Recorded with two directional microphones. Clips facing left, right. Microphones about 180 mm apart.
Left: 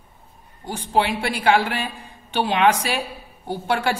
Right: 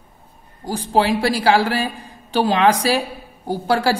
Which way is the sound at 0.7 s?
35° right (ahead or behind).